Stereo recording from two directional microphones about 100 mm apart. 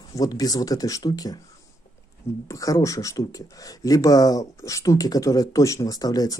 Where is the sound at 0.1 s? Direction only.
35° left (ahead or behind).